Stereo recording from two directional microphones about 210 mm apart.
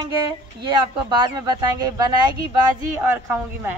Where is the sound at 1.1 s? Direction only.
20° right (ahead or behind).